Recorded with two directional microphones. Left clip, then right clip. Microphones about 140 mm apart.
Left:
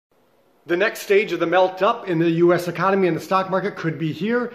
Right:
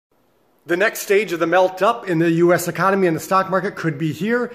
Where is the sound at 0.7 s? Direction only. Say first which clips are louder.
Right 2 dB; 40° right (ahead or behind).